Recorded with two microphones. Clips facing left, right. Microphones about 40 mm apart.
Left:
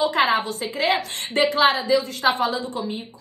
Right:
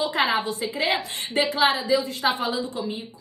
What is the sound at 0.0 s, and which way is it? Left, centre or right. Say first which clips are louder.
A woman's voice: left 3 dB; left.